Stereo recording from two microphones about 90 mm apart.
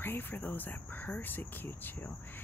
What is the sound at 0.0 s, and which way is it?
Speech, 20° left (ahead or behind).